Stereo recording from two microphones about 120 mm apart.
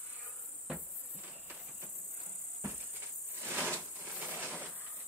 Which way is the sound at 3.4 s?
15° right (ahead or behind).